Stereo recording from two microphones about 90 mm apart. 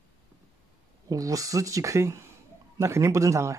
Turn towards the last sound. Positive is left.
turn(degrees=-35)  # may be behind; listen again after turning